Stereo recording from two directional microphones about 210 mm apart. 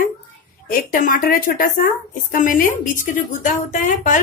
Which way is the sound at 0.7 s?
40° left (ahead or behind).